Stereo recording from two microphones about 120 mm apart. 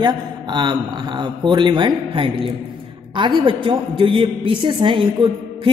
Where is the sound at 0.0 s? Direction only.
40° right (ahead or behind).